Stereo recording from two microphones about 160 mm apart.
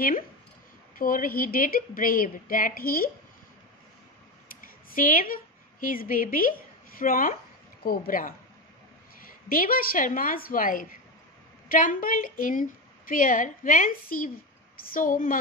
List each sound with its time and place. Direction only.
0.9 s a woman's voice: 60° left (ahead or behind)
4.6 s a woman's voice: 60° left (ahead or behind)
9.5 s a woman's voice: 65° left (ahead or behind)